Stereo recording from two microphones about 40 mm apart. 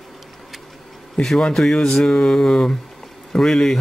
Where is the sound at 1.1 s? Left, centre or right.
Centre.